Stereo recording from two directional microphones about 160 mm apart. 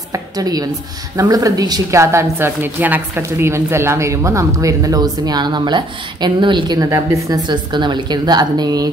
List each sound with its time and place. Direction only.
0.1 s a woman's voice: 25° right (ahead or behind)